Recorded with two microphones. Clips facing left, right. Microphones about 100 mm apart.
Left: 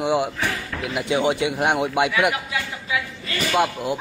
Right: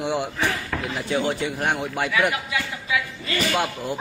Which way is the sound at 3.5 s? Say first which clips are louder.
Left 4 dB; 5° left (ahead or behind).